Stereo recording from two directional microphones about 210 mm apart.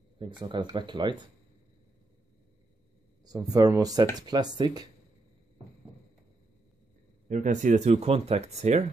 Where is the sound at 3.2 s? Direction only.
15° right (ahead or behind).